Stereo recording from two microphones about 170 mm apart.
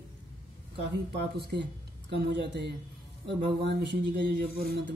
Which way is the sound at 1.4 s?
85° right.